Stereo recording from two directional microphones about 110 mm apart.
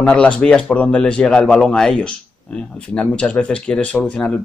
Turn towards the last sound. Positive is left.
turn(degrees=10)  # may be behind; listen again after turning